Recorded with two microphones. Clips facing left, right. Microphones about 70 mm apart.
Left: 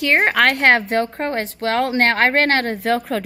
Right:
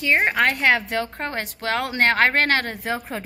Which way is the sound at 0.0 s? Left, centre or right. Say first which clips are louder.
Left 4 dB; left.